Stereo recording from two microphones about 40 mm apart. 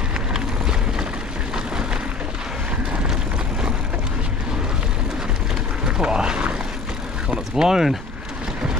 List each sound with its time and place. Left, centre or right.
0.3 s vehicle: centre
5.9 s vehicle: right